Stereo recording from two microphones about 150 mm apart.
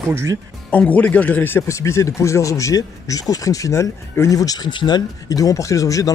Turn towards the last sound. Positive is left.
turn(degrees=20)  # may be behind; listen again after turning